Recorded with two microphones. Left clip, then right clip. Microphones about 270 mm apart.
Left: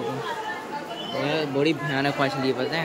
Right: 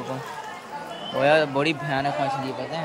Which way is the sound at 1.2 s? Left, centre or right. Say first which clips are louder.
Right 5 dB; centre.